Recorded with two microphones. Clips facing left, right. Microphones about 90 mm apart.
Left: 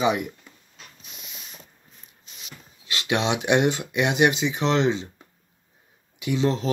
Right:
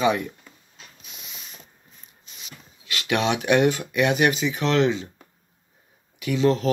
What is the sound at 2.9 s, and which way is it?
Speech, 25° left (ahead or behind).